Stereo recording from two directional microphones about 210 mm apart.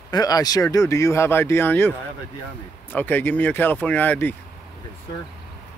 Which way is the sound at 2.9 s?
10° left (ahead or behind).